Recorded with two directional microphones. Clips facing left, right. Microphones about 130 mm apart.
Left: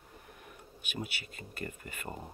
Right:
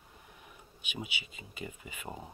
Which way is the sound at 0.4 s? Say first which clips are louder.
Left 3 dB; centre (ahead or behind).